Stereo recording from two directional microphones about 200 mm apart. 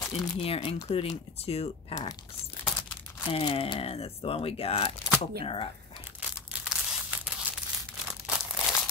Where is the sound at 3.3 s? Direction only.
25° left (ahead or behind).